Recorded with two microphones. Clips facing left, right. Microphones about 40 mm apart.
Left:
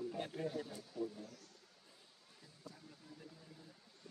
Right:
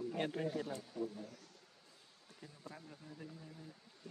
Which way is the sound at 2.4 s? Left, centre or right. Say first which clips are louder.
Right 4 dB; right.